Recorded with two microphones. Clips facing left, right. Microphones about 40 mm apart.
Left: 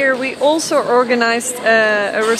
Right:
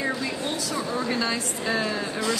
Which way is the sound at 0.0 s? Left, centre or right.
Left.